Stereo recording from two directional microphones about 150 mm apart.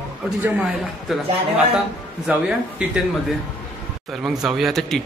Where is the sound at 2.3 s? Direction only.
10° right (ahead or behind).